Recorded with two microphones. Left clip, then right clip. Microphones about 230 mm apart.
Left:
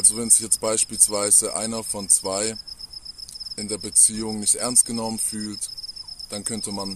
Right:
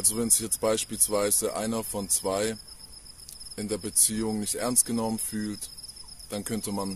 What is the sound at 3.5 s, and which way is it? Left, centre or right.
Cricket, centre.